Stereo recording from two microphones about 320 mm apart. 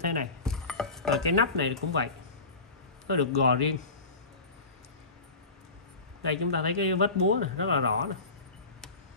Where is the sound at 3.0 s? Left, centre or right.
Right.